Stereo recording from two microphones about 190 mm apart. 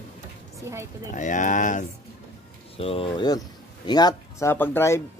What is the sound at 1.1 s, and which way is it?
Speech, 40° left (ahead or behind).